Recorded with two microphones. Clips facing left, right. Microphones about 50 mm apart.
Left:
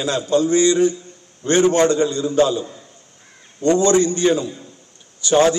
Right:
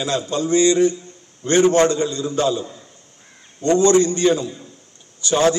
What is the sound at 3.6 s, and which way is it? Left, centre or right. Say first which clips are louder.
Speech: even; left.